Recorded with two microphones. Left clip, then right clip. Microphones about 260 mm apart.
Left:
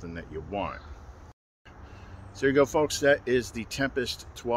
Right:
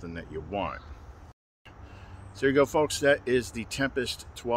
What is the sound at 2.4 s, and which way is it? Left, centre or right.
Speech, centre.